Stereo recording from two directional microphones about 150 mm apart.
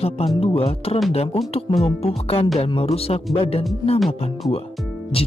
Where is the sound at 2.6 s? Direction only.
40° left (ahead or behind).